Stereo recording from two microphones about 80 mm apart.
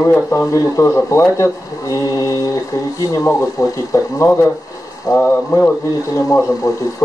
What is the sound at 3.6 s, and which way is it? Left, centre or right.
Speech, left.